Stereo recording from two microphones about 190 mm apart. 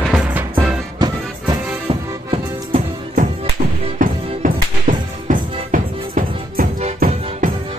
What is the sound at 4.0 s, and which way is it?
Music, 45° right (ahead or behind).